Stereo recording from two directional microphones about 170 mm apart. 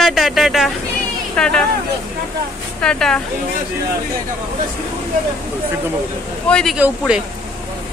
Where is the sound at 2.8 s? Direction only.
5° left (ahead or behind).